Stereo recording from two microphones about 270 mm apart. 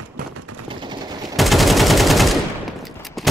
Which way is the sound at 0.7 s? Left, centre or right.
Centre.